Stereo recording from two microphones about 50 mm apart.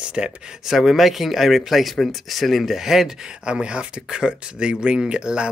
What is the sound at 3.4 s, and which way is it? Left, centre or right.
Speech, centre.